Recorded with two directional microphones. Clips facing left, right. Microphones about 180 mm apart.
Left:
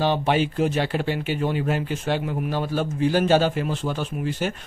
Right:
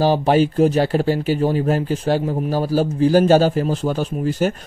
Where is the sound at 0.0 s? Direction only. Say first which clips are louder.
Right 6 dB; 40° right (ahead or behind).